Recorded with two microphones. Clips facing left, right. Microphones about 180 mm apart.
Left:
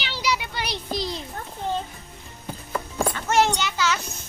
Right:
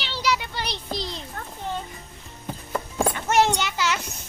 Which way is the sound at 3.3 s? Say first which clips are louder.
Even; 20° right (ahead or behind).